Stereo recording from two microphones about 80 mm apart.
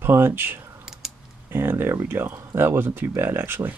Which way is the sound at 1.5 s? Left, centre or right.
Right.